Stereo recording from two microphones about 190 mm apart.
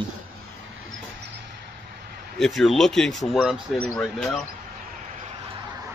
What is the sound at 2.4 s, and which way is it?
Speech, centre (ahead or behind).